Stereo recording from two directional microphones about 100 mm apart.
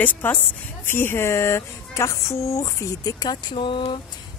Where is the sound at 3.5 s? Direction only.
60° left (ahead or behind).